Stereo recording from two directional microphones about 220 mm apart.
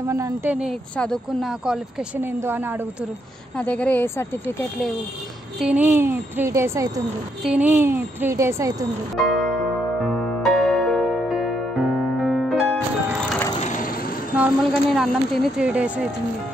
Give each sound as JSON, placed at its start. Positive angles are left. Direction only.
{"t": 0.0, "sound": "speech", "side_deg": -15}
{"t": 3.5, "sound": "speech", "side_deg": 5}
{"t": 5.6, "sound": "speech", "side_deg": -5}
{"t": 9.1, "sound": "speech", "side_deg": 0}
{"t": 10.0, "sound": "music", "side_deg": 0}
{"t": 13.6, "sound": "a sound", "side_deg": 35}
{"t": 14.3, "sound": "vehicle", "side_deg": -5}
{"t": 15.0, "sound": "speech", "side_deg": -5}